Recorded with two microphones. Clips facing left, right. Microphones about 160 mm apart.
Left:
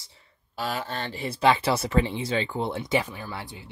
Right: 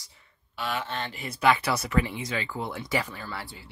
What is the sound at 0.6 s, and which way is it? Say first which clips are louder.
Speech: left 1 dB; 35° left (ahead or behind).